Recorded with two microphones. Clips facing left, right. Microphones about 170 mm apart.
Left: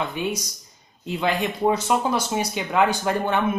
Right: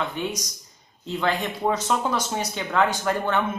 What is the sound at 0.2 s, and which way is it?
Speech, 10° left (ahead or behind).